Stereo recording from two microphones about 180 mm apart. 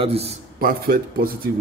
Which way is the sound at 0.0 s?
35° right (ahead or behind).